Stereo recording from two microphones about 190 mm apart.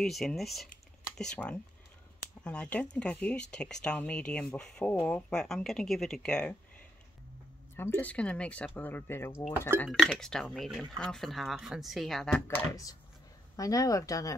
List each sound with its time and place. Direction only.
0.0 s speech: centre (ahead or behind)
7.7 s speech: 10° left (ahead or behind)
9.8 s speech: centre (ahead or behind)
12.4 s speech: 15° left (ahead or behind)